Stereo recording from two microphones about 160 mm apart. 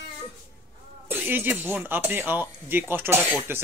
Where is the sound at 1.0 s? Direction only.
15° right (ahead or behind).